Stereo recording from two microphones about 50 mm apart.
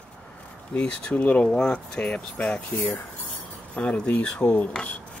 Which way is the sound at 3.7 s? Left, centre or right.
Left.